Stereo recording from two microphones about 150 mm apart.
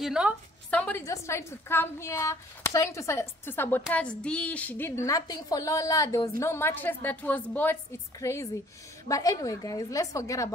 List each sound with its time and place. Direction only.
0.0 s a woman's voice: 5° right (ahead or behind)
0.7 s a woman's voice: 10° left (ahead or behind)
1.0 s a woman's voice: 20° left (ahead or behind)